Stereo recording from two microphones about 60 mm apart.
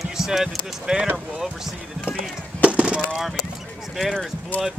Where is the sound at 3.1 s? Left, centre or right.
Centre.